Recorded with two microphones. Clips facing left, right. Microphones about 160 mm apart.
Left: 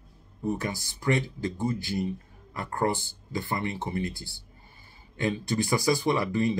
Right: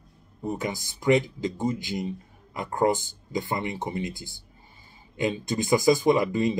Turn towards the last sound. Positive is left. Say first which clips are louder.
# right 4 dB
turn(degrees=-20)  # may be behind; listen again after turning